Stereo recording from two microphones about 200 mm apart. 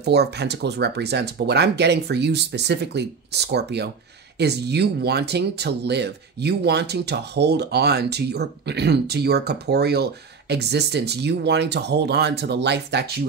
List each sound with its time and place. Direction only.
0.0 s speech: 55° right (ahead or behind)